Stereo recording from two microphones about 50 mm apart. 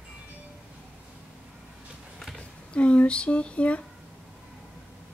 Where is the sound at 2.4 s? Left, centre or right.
Left.